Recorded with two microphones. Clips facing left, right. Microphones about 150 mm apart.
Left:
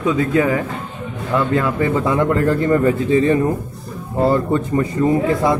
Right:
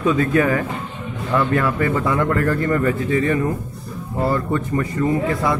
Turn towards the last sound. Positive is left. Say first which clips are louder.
# left 4 dB
turn(degrees=25)  # may be behind; listen again after turning